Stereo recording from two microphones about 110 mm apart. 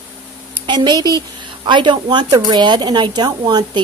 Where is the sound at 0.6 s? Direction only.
40° right (ahead or behind).